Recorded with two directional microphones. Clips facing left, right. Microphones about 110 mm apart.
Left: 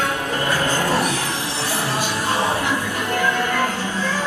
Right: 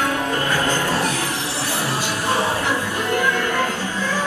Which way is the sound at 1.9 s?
15° left (ahead or behind).